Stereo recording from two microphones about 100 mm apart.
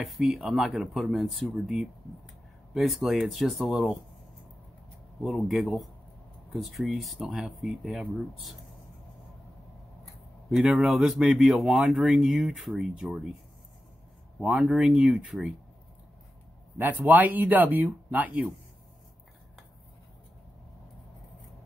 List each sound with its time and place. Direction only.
0.0 s speech: centre (ahead or behind)
5.2 s speech: centre (ahead or behind)
10.5 s speech: 5° right (ahead or behind)
14.4 s speech: 5° right (ahead or behind)
16.7 s speech: 15° right (ahead or behind)